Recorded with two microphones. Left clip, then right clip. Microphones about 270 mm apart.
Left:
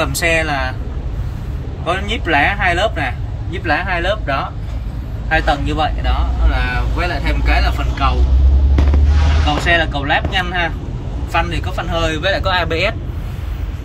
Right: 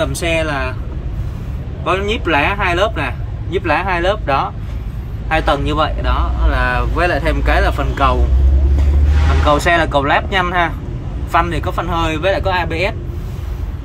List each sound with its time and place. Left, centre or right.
0.1 s speech: centre
1.9 s speech: centre
9.7 s speech: centre